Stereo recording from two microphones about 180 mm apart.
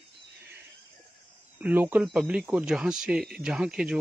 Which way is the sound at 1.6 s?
10° right (ahead or behind).